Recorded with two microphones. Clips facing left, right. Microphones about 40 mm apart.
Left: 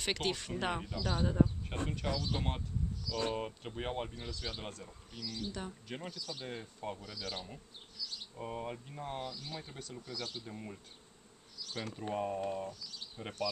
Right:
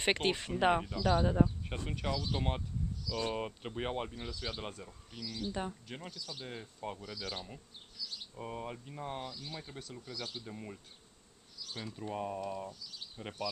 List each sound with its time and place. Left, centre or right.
0.0 s speech: right
0.8 s speech: centre
11.5 s bee: centre
12.1 s speech: centre
12.8 s insect: centre